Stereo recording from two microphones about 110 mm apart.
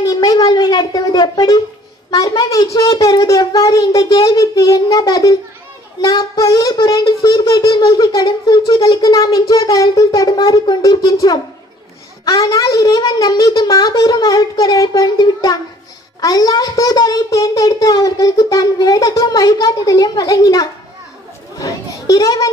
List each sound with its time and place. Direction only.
0.0 s a sound: 35° left (ahead or behind)
2.0 s a child's voice: 35° left (ahead or behind)
21.5 s children playing: 30° left (ahead or behind)